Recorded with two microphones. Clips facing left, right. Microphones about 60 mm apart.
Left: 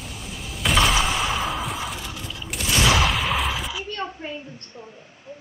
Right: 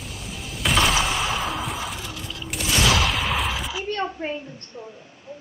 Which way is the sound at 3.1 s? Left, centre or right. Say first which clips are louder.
Left 1 dB; centre.